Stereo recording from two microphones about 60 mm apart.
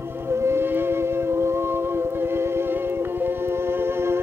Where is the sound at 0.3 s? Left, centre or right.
Right.